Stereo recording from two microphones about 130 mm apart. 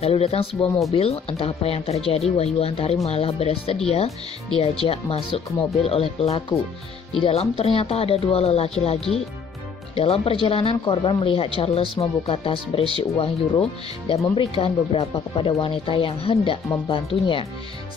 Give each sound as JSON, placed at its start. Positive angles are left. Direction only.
{"t": 0.0, "sound": "speech", "side_deg": 50}